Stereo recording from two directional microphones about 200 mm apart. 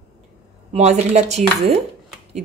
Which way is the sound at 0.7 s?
35° right (ahead or behind).